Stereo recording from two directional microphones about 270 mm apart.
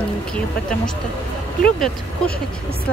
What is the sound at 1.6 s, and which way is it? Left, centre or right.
Speech, centre.